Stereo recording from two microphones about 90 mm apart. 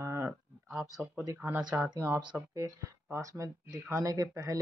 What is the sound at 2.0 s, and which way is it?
Speech, 25° right (ahead or behind).